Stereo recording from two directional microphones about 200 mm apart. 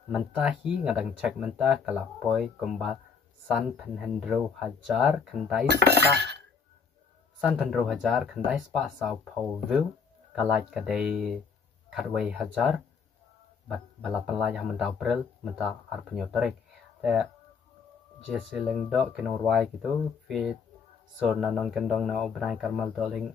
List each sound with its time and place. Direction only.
0.1 s speech: 5° right (ahead or behind)
5.7 s cutlery: 60° right (ahead or behind)
7.3 s speech: 5° right (ahead or behind)
18.3 s speech: centre (ahead or behind)